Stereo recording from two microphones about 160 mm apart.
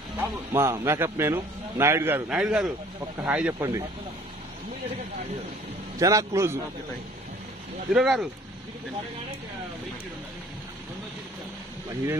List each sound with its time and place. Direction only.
0.5 s a man's voice: 20° right (ahead or behind)
3.5 s a man's voice: 20° right (ahead or behind)
5.9 s a man's voice: 20° right (ahead or behind)
7.9 s speech: 5° right (ahead or behind)